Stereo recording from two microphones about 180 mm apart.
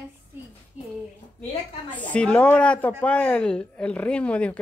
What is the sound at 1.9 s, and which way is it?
Speech, 5° left (ahead or behind).